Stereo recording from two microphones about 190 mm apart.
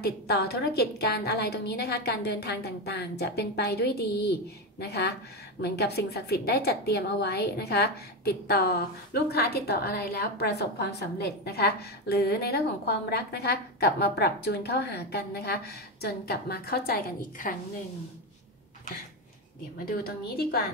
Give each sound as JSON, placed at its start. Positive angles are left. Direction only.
{"t": 0.0, "sound": "a woman's voice", "side_deg": 55}
{"t": 19.8, "sound": "a woman's voice", "side_deg": 50}